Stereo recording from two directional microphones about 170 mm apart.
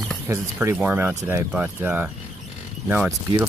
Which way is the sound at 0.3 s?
15° right (ahead or behind).